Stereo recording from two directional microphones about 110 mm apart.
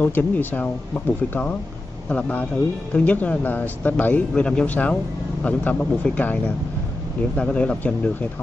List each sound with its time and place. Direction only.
0.0 s speech: 15° left (ahead or behind)